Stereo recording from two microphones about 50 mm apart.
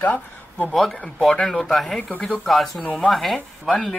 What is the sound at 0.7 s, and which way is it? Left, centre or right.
Speech, centre.